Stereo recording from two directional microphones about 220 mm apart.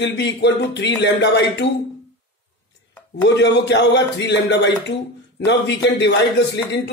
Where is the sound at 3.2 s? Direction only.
50° left (ahead or behind).